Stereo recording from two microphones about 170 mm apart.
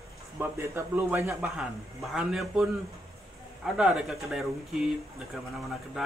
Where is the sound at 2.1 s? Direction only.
Centre (ahead or behind).